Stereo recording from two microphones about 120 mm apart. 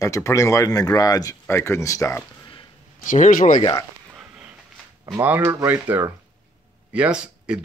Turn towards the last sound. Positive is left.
turn(degrees=-5)  # may be behind; listen again after turning